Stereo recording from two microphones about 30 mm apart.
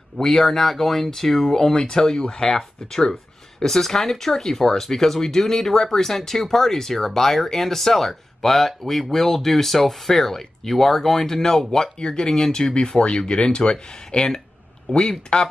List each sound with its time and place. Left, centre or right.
0.4 s speech: centre
2.4 s speech: centre